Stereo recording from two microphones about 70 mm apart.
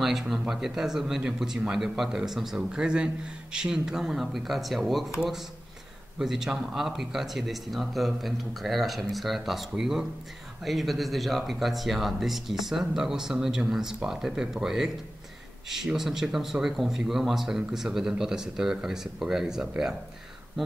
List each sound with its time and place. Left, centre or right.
0.0 s speech: centre
6.1 s speech: centre